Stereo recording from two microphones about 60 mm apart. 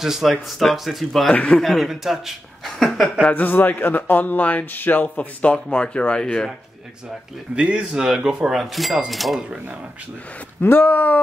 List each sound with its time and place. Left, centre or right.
0.0 s speech: centre
1.3 s speech: left
1.6 s speech: centre
3.3 s speech: left; by 6.5 s centre
7.5 s speech: right
7.9 s speech: centre
10.6 s speech: left